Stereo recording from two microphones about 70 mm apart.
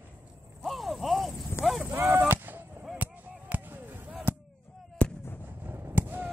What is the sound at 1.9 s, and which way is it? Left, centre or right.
Gunshot, right.